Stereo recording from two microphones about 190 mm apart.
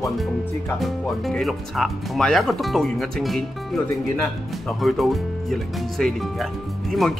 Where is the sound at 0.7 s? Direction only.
Centre (ahead or behind).